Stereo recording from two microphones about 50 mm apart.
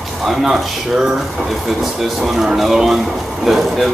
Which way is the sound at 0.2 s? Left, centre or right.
Centre.